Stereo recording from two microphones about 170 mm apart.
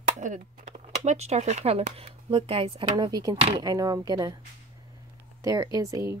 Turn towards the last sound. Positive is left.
turn(degrees=-20)  # may be behind; listen again after turning